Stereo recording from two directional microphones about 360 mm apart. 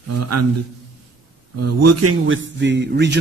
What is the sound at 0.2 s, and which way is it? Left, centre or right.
Speech, right.